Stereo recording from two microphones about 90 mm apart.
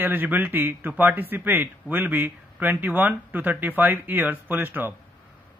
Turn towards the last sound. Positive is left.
turn(degrees=-20)  # may be behind; listen again after turning